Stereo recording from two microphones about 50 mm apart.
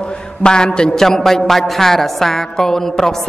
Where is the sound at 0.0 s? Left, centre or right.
Centre.